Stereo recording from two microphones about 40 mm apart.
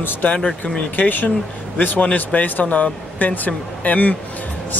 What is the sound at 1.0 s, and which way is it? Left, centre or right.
Speech, left.